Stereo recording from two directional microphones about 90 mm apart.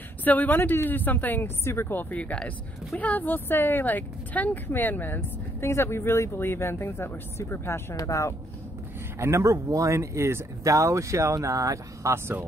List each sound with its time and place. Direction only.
0.2 s speech: 20° left (ahead or behind)
7.9 s speech: 40° left (ahead or behind)
9.2 s speech: 35° right (ahead or behind)